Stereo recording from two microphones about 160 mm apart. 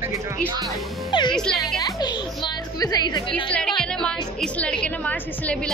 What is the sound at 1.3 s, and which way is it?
Speech, 5° left (ahead or behind).